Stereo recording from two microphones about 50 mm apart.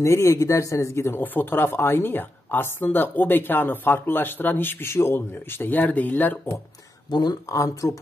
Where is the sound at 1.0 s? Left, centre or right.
Left.